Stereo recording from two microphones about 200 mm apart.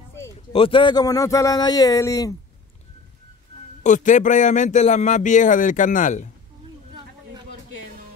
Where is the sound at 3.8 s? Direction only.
40° left (ahead or behind).